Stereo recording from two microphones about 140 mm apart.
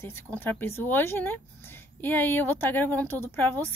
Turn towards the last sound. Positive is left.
turn(degrees=15)  # may be behind; listen again after turning